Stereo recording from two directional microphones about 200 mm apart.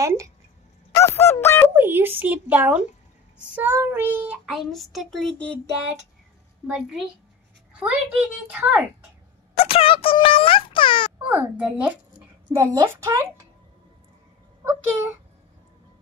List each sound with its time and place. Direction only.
0.0 s a woman's voice: 15° right (ahead or behind)
0.9 s honk: 15° left (ahead or behind)
1.8 s a woman's voice: 10° right (ahead or behind)
3.3 s child singing: 10° right (ahead or behind)
6.7 s child singing: centre (ahead or behind)
7.7 s a sound: 5° right (ahead or behind)
8.2 s a woman's voice: 5° right (ahead or behind)
9.6 s speech: 30° left (ahead or behind)
11.2 s a woman's voice: 10° right (ahead or behind)
14.6 s a woman's voice: 15° right (ahead or behind)